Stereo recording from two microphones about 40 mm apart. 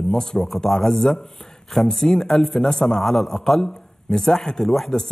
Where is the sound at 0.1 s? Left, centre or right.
Centre.